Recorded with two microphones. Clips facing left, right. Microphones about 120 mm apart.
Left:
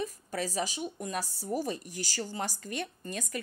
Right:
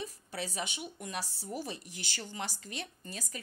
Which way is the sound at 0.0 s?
45° left (ahead or behind).